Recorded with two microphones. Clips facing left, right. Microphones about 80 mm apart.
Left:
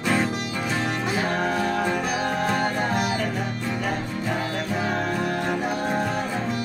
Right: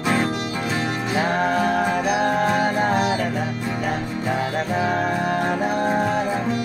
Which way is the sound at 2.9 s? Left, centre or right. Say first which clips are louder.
Right 4 dB; right.